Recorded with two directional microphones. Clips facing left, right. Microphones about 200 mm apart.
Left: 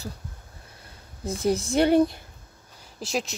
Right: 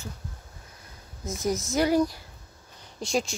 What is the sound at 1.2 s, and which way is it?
Speech, 30° left (ahead or behind).